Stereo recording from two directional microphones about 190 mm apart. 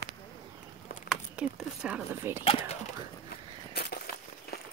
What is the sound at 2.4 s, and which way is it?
Speech, 30° left (ahead or behind).